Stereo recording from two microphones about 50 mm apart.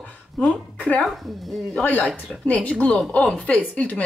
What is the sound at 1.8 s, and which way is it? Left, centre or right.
A woman's voice, left.